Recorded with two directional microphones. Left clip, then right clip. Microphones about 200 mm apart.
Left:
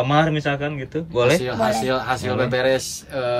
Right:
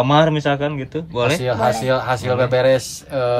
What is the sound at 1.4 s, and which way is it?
A man's voice, 35° right (ahead or behind).